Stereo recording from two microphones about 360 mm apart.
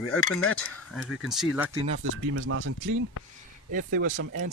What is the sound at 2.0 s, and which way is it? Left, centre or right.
Speech, right.